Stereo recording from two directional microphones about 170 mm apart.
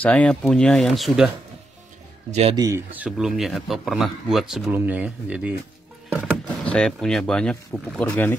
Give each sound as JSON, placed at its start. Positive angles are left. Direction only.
{"t": 0.0, "sound": "speech", "side_deg": 10}
{"t": 2.5, "sound": "speech", "side_deg": -20}
{"t": 3.0, "sound": "speech", "side_deg": -5}
{"t": 6.2, "sound": "speech", "side_deg": 5}